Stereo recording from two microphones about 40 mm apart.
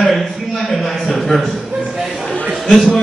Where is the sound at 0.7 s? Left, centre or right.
Centre.